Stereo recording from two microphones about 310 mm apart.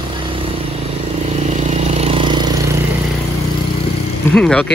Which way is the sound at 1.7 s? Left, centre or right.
Right.